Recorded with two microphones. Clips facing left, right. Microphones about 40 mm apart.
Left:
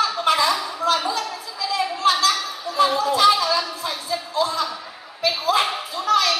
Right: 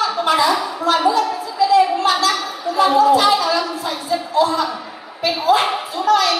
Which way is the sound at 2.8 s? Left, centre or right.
Right.